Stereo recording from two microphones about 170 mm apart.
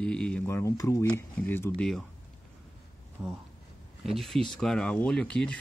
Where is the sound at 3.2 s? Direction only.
15° right (ahead or behind).